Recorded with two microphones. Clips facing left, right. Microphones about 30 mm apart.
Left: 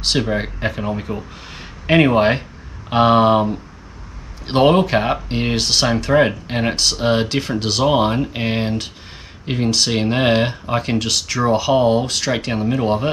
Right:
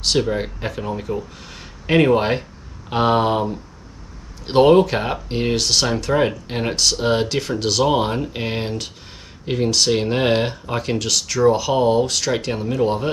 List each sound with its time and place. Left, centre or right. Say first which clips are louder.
0.0 s speech: even; centre